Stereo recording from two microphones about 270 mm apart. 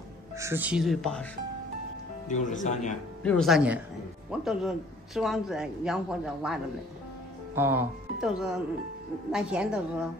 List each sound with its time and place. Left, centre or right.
0.4 s a man's voice: centre
2.2 s speech: left
3.2 s a man's voice: centre